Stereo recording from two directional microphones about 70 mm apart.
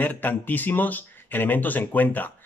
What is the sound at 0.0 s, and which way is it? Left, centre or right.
Speech, left.